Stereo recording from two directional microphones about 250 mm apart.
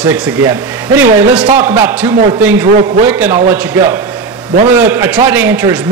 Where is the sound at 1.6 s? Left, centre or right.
Centre.